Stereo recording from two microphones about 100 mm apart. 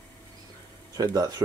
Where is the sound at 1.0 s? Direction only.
40° right (ahead or behind).